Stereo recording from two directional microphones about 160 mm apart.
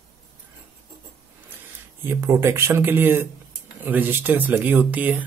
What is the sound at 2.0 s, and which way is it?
Speech, 15° right (ahead or behind).